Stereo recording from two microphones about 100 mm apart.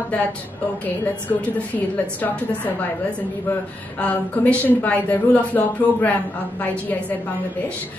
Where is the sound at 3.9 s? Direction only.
15° left (ahead or behind).